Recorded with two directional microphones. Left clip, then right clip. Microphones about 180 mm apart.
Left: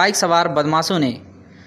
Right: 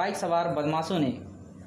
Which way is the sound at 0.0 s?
30° left (ahead or behind).